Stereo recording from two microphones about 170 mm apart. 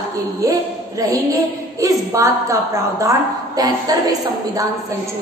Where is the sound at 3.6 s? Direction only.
20° right (ahead or behind).